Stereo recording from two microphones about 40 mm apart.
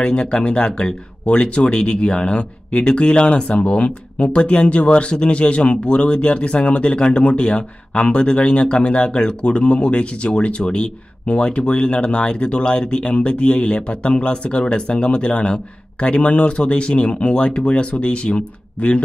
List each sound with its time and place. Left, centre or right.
0.0 s speech: left